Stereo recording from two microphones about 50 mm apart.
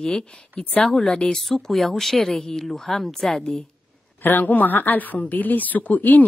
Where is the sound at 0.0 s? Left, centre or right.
Centre.